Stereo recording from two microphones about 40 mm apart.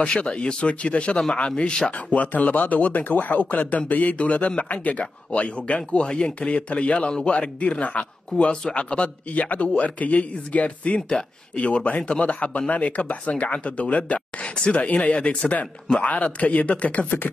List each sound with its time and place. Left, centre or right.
0.0 s speech: left
1.9 s speech: left
11.0 s speech: centre
11.5 s speech: left